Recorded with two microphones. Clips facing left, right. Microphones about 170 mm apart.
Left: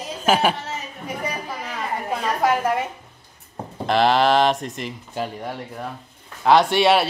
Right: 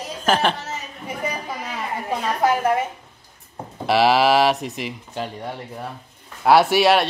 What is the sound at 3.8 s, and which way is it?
Speech, 5° right (ahead or behind).